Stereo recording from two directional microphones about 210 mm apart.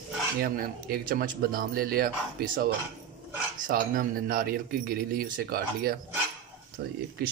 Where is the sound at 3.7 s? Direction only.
45° right (ahead or behind).